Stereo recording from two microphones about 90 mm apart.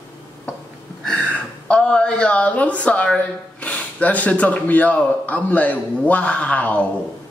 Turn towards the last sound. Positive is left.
turn(degrees=15)  # may be behind; listen again after turning